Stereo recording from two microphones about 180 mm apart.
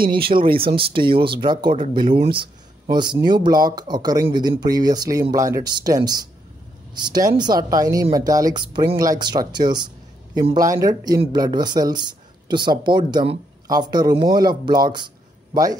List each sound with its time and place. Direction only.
0.4 s speech: 30° right (ahead or behind)